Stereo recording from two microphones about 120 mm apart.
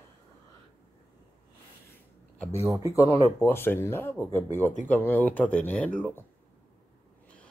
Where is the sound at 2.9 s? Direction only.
25° left (ahead or behind); by 6.1 s 10° left (ahead or behind).